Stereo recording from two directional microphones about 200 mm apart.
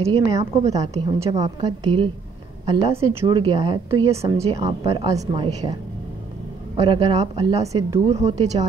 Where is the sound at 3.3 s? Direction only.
25° right (ahead or behind).